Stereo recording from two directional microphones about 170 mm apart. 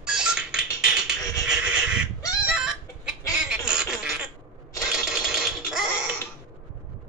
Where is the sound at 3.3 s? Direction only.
5° right (ahead or behind).